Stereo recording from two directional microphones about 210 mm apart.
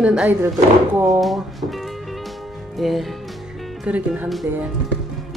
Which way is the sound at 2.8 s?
Centre (ahead or behind).